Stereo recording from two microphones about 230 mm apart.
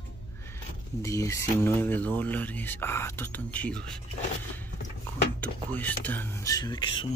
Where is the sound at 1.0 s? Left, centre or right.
Centre.